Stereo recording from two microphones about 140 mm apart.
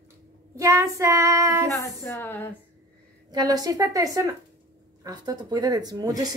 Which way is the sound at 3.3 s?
25° right (ahead or behind).